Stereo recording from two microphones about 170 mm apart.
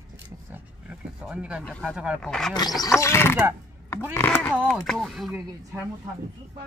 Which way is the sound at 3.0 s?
15° left (ahead or behind).